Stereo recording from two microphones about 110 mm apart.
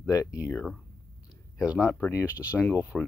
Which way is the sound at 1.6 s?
5° right (ahead or behind).